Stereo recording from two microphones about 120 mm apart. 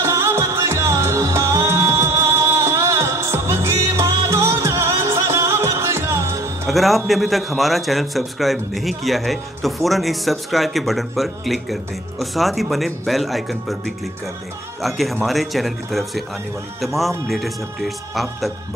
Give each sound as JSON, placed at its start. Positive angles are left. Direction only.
{"t": 0.0, "sound": "music", "side_deg": -25}
{"t": 6.7, "sound": "a man's voice", "side_deg": 0}